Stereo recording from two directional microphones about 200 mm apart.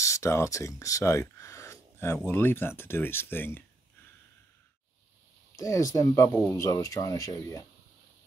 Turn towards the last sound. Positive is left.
turn(degrees=15)  # may be behind; listen again after turning